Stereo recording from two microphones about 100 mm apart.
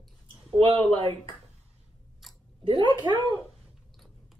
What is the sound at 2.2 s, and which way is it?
Chewing, centre (ahead or behind).